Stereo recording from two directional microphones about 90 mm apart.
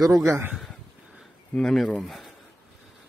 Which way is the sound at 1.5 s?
5° left (ahead or behind).